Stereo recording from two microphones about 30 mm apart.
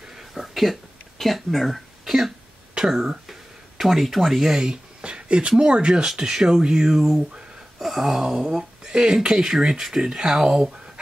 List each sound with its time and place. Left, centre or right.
0.3 s speech: centre
2.0 s speech: centre
2.8 s speech: right
3.3 s a sound: centre
5.0 s a sound: right
5.6 s speech: right
6.0 s speech: centre
8.4 s speech: right
10.0 s speech: right